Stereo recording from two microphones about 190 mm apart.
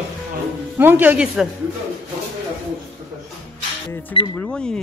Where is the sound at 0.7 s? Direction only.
10° right (ahead or behind).